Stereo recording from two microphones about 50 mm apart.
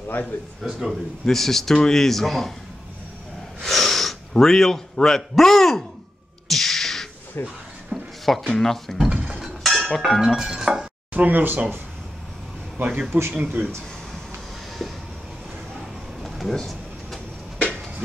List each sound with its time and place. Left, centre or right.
0.7 s speech: centre
1.2 s speech: centre
3.6 s snort: centre
4.3 s a man's voice: centre
6.5 s a sound: centre
7.4 s speech: left
7.9 s a sound: centre
8.5 s speech: centre
8.9 s dishes: centre
9.6 s a sound: centre
10.2 s speech: centre
11.1 s a man's voice: right
14.8 s train: centre
16.2 s a sound: centre